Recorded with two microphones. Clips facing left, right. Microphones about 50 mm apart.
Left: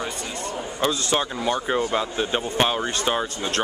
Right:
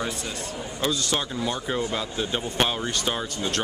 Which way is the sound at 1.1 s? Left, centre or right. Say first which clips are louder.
Left 4 dB; left.